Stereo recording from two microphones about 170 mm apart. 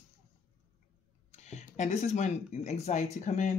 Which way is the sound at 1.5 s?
45° left (ahead or behind).